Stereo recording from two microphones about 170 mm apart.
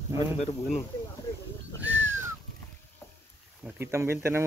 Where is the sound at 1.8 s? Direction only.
10° right (ahead or behind).